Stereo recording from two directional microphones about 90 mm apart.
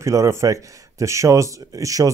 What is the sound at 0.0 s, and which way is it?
Speech, 35° right (ahead or behind).